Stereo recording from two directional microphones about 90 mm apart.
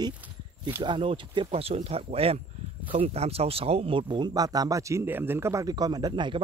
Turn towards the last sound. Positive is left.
turn(degrees=-60)  # may be behind; listen again after turning